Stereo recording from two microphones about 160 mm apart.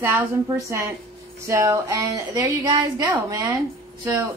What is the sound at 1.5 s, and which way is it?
A woman's voice, 20° right (ahead or behind).